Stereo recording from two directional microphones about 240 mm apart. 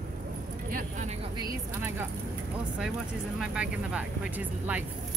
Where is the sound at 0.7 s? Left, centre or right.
Right.